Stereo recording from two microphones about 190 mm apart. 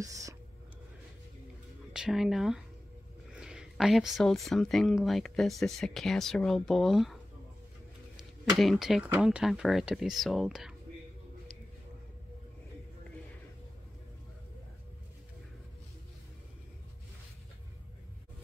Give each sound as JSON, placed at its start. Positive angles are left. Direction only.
{"t": 0.0, "sound": "whispering", "side_deg": -15}
{"t": 2.0, "sound": "speech", "side_deg": 0}
{"t": 8.2, "sound": "speech", "side_deg": 0}